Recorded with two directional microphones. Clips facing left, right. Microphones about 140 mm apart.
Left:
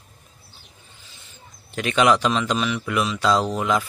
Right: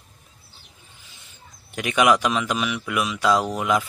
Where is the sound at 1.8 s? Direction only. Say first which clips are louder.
Left 1 dB; 15° right (ahead or behind).